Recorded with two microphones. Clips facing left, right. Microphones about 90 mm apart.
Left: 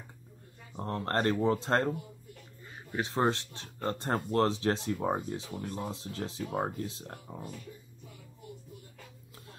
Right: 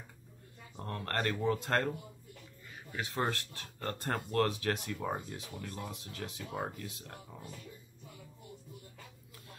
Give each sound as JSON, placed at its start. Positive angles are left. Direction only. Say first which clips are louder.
{"t": 0.7, "sound": "speech", "louder": "left 5 dB", "side_deg": 30}